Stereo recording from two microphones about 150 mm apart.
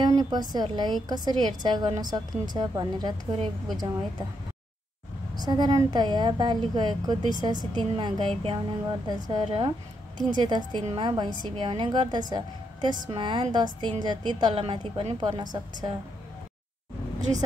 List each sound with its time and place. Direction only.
0.0 s a woman's voice: 30° right (ahead or behind)
5.3 s a woman's voice: 30° right (ahead or behind)